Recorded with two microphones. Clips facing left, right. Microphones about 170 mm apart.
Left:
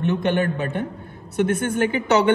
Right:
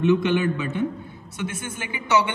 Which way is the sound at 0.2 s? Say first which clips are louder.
Left 1 dB; 55° left (ahead or behind).